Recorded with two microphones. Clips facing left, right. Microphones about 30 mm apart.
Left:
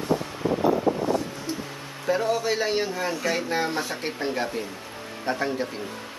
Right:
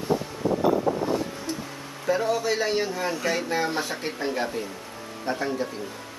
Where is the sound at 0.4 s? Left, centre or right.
Left.